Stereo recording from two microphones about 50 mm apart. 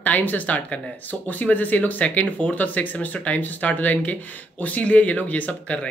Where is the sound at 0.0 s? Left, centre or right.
Left.